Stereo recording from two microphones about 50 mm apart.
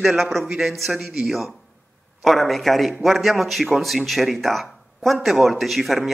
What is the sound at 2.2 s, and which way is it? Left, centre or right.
A man's voice, centre.